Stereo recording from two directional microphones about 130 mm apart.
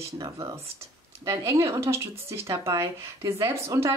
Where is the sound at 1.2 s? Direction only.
25° right (ahead or behind).